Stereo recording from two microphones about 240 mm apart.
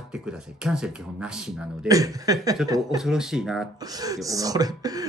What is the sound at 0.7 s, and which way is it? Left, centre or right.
Speech, centre.